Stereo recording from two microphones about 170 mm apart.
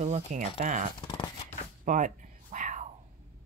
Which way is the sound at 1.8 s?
50° right (ahead or behind).